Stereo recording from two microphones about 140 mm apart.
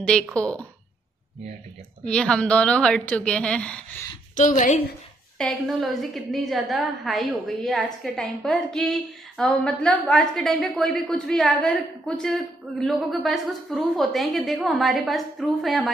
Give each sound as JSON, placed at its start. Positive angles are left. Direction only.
{"t": 0.0, "sound": "a woman's voice", "side_deg": 10}
{"t": 2.0, "sound": "a woman's voice", "side_deg": 5}
{"t": 4.4, "sound": "a woman's voice", "side_deg": 65}
{"t": 5.4, "sound": "a woman's voice", "side_deg": 0}